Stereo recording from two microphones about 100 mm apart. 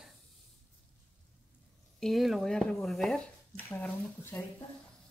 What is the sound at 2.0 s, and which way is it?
Speech, centre (ahead or behind).